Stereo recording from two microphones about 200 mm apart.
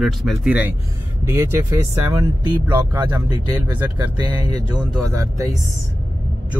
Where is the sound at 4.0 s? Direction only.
20° right (ahead or behind).